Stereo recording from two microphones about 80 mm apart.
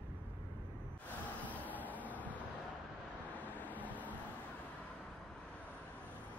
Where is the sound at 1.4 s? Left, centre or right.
Left.